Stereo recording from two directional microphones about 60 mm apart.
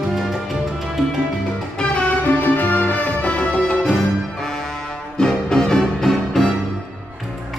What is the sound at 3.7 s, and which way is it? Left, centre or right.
Music, centre.